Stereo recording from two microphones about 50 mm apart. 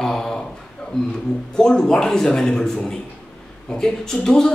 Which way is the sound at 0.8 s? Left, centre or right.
Left.